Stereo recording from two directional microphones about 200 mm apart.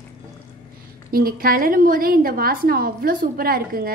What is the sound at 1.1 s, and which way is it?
A woman's voice, 45° right (ahead or behind).